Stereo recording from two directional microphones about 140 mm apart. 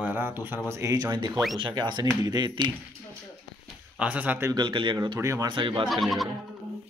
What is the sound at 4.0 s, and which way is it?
Speech, 10° right (ahead or behind).